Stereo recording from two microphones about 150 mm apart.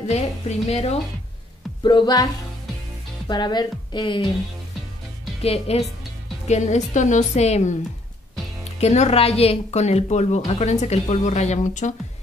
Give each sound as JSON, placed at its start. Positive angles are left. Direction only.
{"t": 0.1, "sound": "a woman's voice", "side_deg": 45}
{"t": 1.8, "sound": "speech", "side_deg": 30}
{"t": 3.3, "sound": "speech", "side_deg": 30}
{"t": 5.4, "sound": "a woman's voice", "side_deg": 40}
{"t": 8.7, "sound": "a woman's voice", "side_deg": 45}